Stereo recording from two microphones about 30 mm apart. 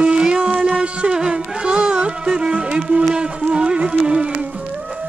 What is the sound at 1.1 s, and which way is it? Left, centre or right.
Music, right.